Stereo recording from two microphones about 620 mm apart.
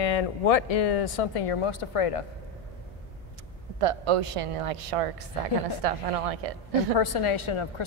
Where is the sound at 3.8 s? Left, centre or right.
Right.